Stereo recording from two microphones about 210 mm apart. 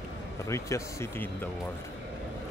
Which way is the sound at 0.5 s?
15° left (ahead or behind).